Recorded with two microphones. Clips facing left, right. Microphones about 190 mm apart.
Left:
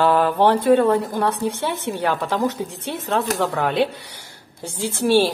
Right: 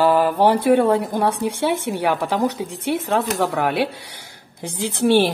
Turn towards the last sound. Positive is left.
turn(degrees=-20)  # may be behind; listen again after turning